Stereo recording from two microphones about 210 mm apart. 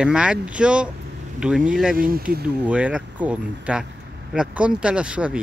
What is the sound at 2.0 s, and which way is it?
Speech, 45° right (ahead or behind).